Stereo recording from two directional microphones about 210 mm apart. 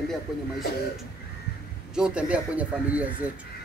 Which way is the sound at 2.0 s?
5° right (ahead or behind).